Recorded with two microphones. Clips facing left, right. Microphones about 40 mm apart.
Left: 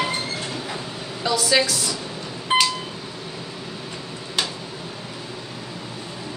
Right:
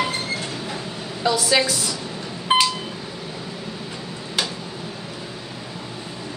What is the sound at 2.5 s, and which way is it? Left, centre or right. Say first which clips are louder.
Beep: right 1 dB; centre.